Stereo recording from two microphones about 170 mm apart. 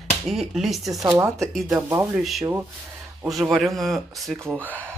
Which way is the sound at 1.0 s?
20° right (ahead or behind).